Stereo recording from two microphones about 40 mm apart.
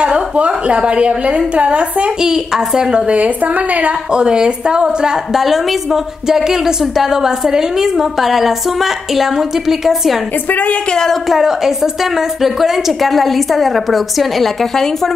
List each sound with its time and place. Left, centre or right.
0.0 s a woman's voice: right
2.1 s a woman's voice: centre
3.1 s a woman's voice: right
4.1 s a woman's voice: right
5.4 s a woman's voice: centre
10.5 s speech: left
10.9 s speech: centre
11.2 s a woman's voice: centre